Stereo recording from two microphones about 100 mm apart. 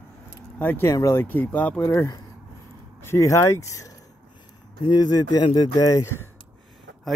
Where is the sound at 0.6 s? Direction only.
20° left (ahead or behind).